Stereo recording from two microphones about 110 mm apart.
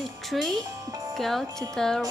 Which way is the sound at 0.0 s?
Centre (ahead or behind).